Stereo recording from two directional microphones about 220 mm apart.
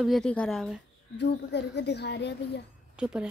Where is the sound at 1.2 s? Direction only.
50° left (ahead or behind).